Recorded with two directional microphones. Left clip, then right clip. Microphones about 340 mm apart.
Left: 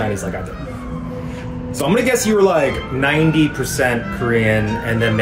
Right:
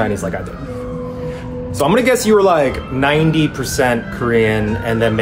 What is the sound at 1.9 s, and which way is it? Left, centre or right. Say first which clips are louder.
Speech: right 3 dB; centre.